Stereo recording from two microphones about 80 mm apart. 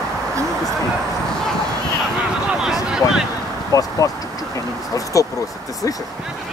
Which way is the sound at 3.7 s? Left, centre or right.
Left.